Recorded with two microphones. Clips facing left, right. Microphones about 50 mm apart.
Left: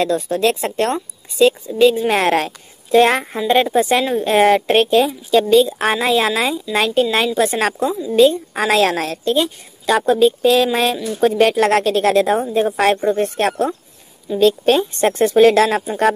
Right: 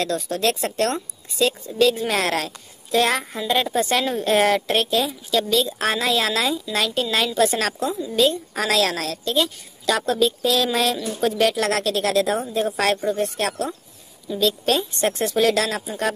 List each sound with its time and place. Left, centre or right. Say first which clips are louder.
0.0 s a woman's voice: left 6 dB; left
4.0 s a woman's voice: left 5 dB; centre
4.3 s a woman's voice: left 5 dB; left